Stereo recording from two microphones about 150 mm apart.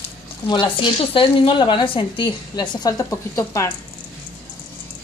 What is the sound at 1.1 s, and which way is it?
A woman's voice, 35° left (ahead or behind).